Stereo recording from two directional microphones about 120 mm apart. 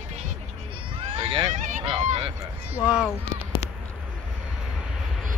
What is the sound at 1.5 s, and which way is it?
Honk, 90° right.